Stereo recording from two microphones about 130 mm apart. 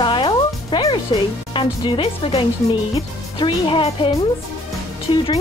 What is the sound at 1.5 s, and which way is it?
Speech, 35° left (ahead or behind).